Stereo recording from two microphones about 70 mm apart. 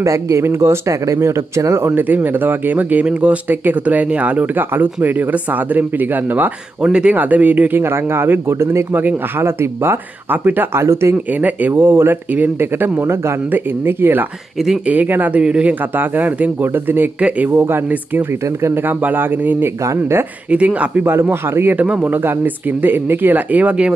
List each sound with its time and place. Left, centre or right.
0.0 s speech: right
2.0 s speech: right
6.8 s speech: centre
7.8 s speech: right
11.3 s speech: right
13.0 s speech: right
13.5 s speech: right
19.8 s speech: right
20.4 s speech: centre
21.0 s speech: right
21.7 s speech: centre
22.1 s speech: right